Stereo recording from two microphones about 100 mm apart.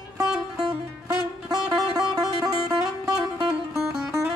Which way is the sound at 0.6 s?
40° right (ahead or behind).